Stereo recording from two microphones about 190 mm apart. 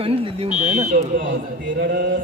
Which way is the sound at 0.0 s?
30° right (ahead or behind).